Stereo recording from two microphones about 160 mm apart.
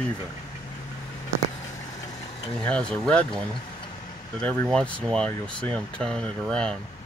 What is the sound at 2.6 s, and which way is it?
Speech, 5° left (ahead or behind).